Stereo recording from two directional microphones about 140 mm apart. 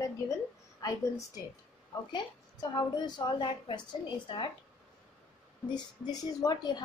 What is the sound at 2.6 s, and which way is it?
A woman's voice, 30° left (ahead or behind).